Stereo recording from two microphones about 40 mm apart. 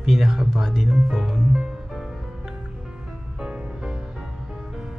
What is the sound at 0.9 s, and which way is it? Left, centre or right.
Music, centre.